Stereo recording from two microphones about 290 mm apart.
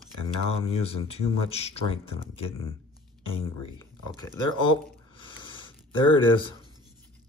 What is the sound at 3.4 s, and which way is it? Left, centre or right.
Speech, centre.